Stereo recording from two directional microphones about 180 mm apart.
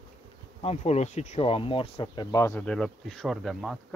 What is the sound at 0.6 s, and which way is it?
Speech, 35° left (ahead or behind).